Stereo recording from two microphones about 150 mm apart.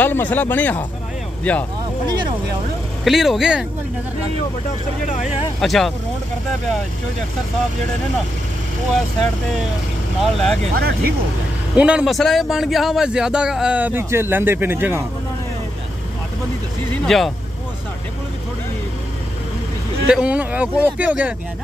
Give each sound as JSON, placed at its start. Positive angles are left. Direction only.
{"t": 0.0, "sound": "speech", "side_deg": 10}
{"t": 3.0, "sound": "speech", "side_deg": 0}
{"t": 5.2, "sound": "speech", "side_deg": 0}
{"t": 10.2, "sound": "speech", "side_deg": 0}
{"t": 10.7, "sound": "speech", "side_deg": -90}
{"t": 11.7, "sound": "a man's voice", "side_deg": -5}
{"t": 17.0, "sound": "speech", "side_deg": 0}
{"t": 20.1, "sound": "a man's voice", "side_deg": -5}